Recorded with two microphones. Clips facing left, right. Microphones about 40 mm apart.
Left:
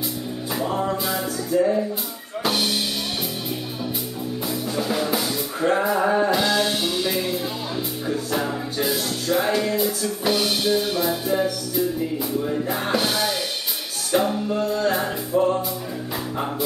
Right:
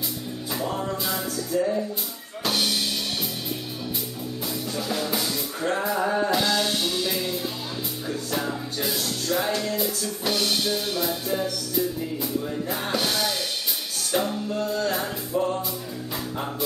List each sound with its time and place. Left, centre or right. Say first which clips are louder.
0.6 s music: left 5 dB; centre
4.5 s music: left 4 dB; centre
6.3 s music: left 3 dB; centre